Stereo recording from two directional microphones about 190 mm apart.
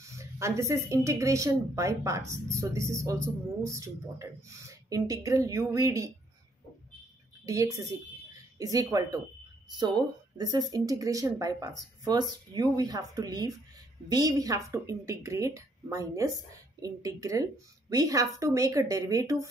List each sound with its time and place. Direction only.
0.0 s speech: 15° right (ahead or behind)
7.4 s speech: 15° right (ahead or behind)